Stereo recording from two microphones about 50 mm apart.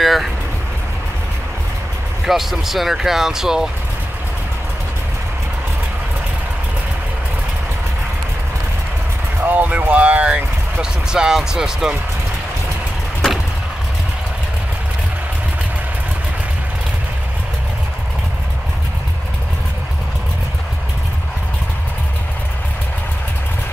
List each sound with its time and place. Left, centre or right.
0.0 s vehicle: centre
2.2 s speech: centre
9.4 s speech: right
10.8 s speech: centre